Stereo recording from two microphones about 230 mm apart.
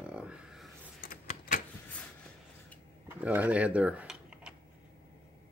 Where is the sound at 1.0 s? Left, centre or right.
Left.